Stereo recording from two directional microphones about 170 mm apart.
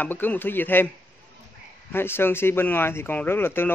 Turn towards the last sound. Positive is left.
turn(degrees=15)  # may be behind; listen again after turning